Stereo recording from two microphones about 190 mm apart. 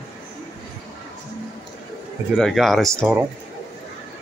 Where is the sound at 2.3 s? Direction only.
Centre (ahead or behind).